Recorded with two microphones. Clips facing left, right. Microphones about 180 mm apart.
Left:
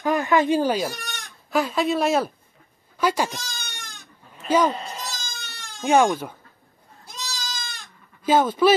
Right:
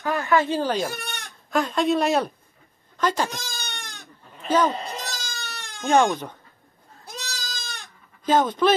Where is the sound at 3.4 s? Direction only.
60° right (ahead or behind).